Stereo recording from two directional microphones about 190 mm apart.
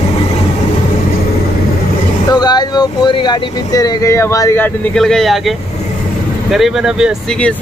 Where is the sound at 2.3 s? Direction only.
20° left (ahead or behind).